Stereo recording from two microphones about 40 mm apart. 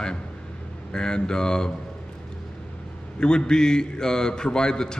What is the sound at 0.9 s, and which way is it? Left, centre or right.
Speech, centre.